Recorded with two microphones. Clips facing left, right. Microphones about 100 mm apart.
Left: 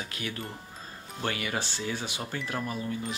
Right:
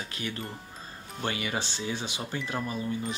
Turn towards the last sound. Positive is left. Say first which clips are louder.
# right 1 dB
turn(degrees=0)  # may be behind; listen again after turning